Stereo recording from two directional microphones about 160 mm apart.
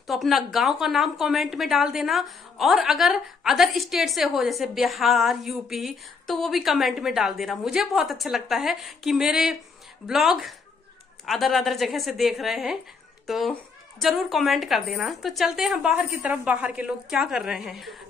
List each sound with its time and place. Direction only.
0.0 s a woman's voice: centre (ahead or behind)